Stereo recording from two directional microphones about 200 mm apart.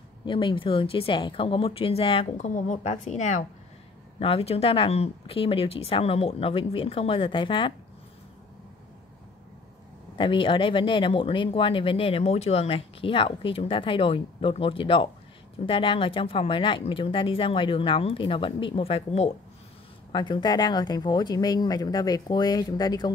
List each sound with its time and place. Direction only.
0.2 s speech: 25° left (ahead or behind)
10.1 s speech: 25° left (ahead or behind)